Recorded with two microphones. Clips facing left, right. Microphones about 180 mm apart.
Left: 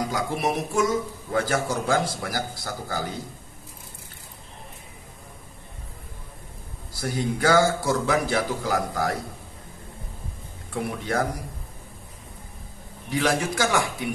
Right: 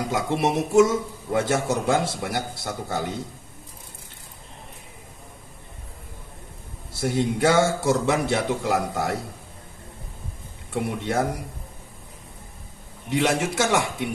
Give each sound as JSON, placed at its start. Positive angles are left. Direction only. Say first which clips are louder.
{"t": 0.1, "sound": "a man's voice", "louder": "right 3 dB", "side_deg": -25}
{"t": 6.9, "sound": "a man's voice", "louder": "right 4 dB", "side_deg": -25}
{"t": 10.7, "sound": "a man's voice", "louder": "right 2 dB", "side_deg": -25}
{"t": 13.1, "sound": "a man's voice", "louder": "right 1 dB", "side_deg": -25}